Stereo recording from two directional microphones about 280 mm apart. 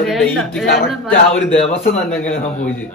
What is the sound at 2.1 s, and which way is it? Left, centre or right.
Speech, centre.